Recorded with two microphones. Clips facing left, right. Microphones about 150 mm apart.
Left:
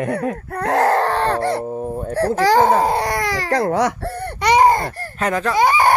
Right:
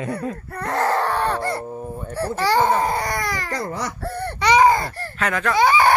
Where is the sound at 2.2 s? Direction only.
90° left; by 4.1 s 75° left (ahead or behind).